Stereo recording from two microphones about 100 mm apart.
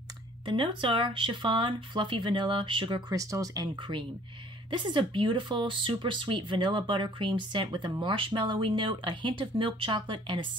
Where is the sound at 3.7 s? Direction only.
55° right (ahead or behind).